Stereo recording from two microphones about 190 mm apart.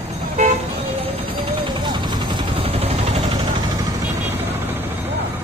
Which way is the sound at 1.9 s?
20° right (ahead or behind).